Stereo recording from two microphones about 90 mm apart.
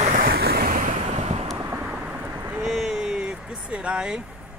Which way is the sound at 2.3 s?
25° right (ahead or behind).